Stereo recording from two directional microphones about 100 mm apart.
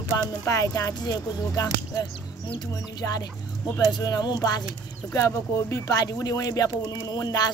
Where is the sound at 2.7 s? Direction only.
40° left (ahead or behind).